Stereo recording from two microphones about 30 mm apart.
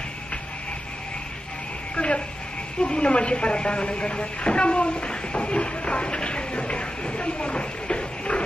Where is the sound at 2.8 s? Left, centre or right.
Left.